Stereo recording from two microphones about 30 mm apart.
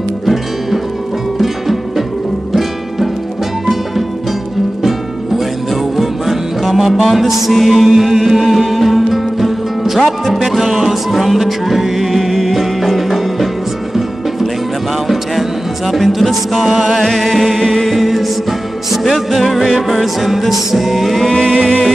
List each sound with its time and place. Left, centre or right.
1.4 s music: centre
5.7 s music: centre
15.9 s music: centre
17.5 s music: centre
21.2 s music: centre